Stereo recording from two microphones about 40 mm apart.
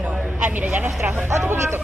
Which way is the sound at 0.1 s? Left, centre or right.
Right.